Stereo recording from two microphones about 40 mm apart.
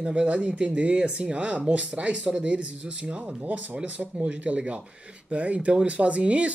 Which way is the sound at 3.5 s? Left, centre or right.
Right.